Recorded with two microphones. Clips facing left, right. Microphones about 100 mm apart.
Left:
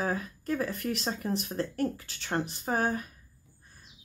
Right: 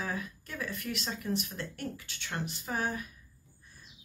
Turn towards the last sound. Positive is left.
turn(degrees=40)  # may be behind; listen again after turning